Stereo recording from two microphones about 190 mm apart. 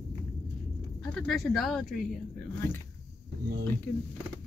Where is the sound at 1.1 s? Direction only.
Centre (ahead or behind).